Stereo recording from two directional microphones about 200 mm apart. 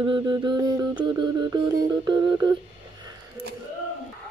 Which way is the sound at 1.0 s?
20° right (ahead or behind).